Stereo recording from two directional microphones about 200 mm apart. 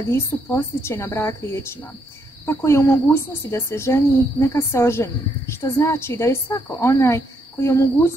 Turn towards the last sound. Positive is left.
turn(degrees=15)  # may be behind; listen again after turning